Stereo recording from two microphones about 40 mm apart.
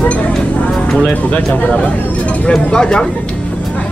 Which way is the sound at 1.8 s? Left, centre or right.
Left.